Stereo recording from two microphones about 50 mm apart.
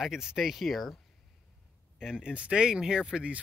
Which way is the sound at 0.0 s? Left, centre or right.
Centre.